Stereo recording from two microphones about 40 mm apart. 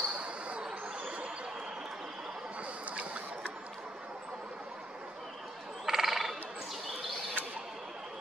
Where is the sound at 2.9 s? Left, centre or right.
Right.